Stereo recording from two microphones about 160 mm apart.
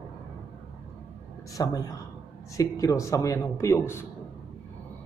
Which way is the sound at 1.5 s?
20° left (ahead or behind).